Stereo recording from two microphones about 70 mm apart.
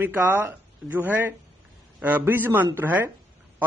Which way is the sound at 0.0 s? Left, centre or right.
Right.